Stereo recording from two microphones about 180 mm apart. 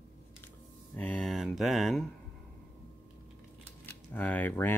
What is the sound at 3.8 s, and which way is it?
Speech, 10° left (ahead or behind).